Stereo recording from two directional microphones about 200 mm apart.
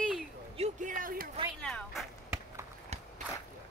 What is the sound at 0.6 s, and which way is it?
Speech, 40° right (ahead or behind).